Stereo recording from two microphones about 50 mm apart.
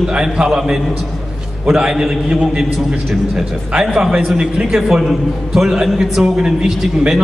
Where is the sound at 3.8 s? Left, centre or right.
Centre.